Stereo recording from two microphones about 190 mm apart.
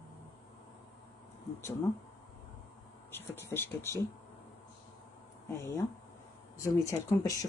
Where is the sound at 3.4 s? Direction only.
10° left (ahead or behind).